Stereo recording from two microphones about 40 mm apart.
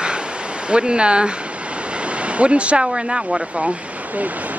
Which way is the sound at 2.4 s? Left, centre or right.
Right.